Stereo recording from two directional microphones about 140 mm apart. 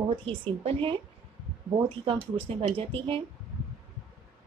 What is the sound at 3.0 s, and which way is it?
Speech, 40° right (ahead or behind).